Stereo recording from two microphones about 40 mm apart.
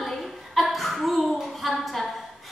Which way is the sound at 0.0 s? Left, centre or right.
Centre.